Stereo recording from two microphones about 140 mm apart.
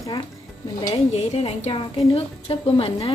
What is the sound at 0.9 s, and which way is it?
A woman's voice, 45° left (ahead or behind).